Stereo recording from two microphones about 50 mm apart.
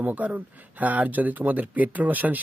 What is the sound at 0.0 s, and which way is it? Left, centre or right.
Speech, right.